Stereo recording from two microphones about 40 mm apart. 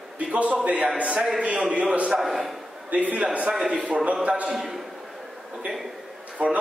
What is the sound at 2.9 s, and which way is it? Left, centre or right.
A man's voice, right.